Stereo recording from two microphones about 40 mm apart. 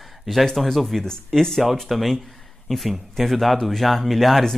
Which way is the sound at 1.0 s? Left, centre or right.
Centre.